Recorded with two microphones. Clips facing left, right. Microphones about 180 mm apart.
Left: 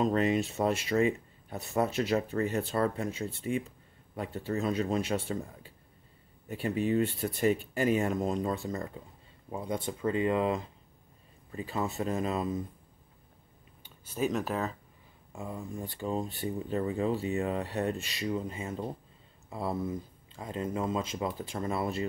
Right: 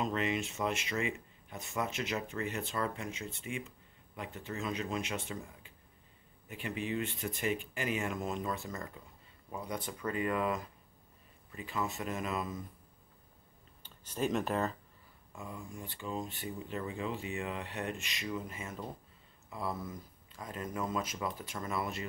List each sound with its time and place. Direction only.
0.0 s speech: 40° left (ahead or behind)
13.8 s speech: 10° left (ahead or behind)
15.3 s speech: 35° left (ahead or behind)